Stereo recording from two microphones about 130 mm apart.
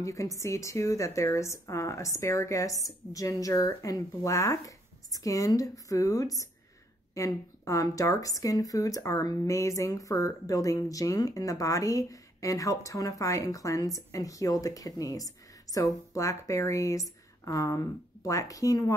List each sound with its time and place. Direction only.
0.0 s speech: 25° left (ahead or behind)